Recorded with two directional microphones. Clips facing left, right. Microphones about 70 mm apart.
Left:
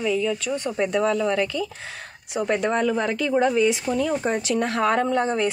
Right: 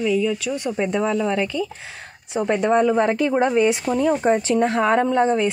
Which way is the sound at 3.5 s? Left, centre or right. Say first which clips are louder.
Right 2 dB; right.